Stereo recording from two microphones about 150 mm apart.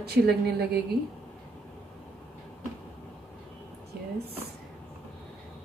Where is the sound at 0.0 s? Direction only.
90° right.